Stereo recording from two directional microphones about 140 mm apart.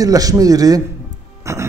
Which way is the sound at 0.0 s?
25° right (ahead or behind).